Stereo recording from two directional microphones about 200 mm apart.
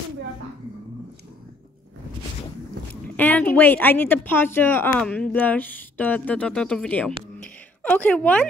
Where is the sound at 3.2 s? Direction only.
10° left (ahead or behind).